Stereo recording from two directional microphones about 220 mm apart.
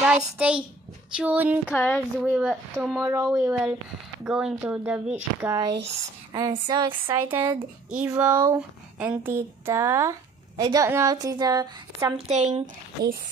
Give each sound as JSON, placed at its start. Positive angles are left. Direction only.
{"t": 0.0, "sound": "speech", "side_deg": -5}
{"t": 1.7, "sound": "speech", "side_deg": 10}
{"t": 2.2, "sound": "speech", "side_deg": 0}
{"t": 6.3, "sound": "speech", "side_deg": -20}
{"t": 12.3, "sound": "speech", "side_deg": -30}